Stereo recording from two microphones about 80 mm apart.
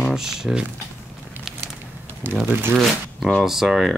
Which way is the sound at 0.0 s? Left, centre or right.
Centre.